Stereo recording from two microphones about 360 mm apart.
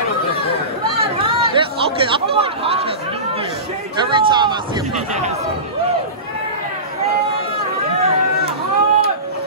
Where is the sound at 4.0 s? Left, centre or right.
Centre.